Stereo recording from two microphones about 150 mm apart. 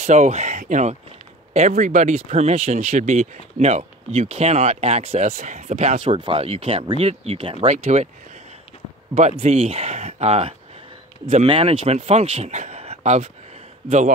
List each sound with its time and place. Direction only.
0.0 s speech: 50° right (ahead or behind)
6.1 s speech: 35° right (ahead or behind)
9.1 s speech: 50° right (ahead or behind)